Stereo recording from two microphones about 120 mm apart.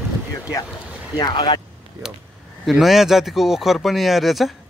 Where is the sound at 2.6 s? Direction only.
Centre (ahead or behind).